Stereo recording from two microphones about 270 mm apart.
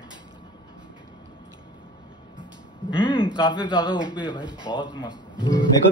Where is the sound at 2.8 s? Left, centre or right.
Centre.